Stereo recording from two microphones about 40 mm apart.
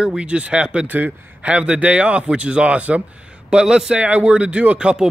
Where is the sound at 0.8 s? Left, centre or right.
Right.